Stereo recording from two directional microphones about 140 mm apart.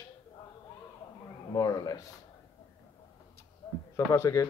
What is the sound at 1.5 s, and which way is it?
Speech, 25° left (ahead or behind).